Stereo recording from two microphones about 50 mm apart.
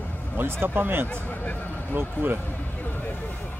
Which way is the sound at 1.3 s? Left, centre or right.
Left.